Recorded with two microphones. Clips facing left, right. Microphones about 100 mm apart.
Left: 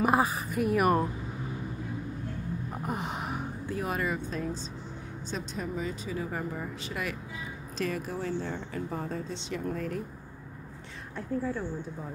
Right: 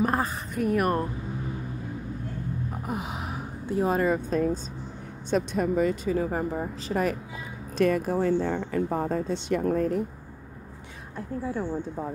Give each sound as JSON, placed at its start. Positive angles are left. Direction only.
{"t": 0.0, "sound": "a woman's voice", "side_deg": 10}
{"t": 2.7, "sound": "gasp", "side_deg": 0}
{"t": 3.6, "sound": "speech", "side_deg": -30}
{"t": 5.3, "sound": "speech", "side_deg": -55}
{"t": 6.3, "sound": "speech", "side_deg": -40}
{"t": 7.7, "sound": "a woman's voice", "side_deg": -55}
{"t": 8.8, "sound": "a woman's voice", "side_deg": -45}
{"t": 9.8, "sound": "speech", "side_deg": -30}